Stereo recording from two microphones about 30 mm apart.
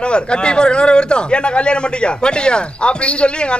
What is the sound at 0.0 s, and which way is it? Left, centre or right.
A man's voice, left.